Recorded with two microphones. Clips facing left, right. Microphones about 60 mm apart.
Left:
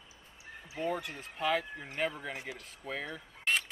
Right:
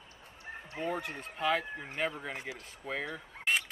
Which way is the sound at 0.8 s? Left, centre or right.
Centre.